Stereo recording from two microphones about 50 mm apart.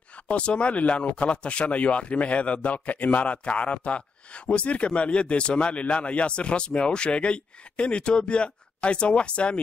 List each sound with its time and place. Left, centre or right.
0.3 s speech: left